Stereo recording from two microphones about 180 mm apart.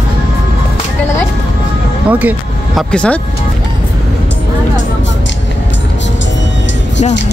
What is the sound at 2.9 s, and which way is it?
Speech, 5° left (ahead or behind).